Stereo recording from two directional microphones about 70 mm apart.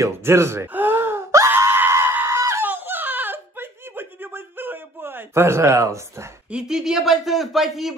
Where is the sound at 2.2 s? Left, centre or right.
Right.